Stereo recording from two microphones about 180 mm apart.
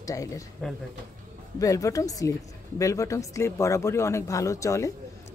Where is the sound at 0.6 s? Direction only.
5° left (ahead or behind).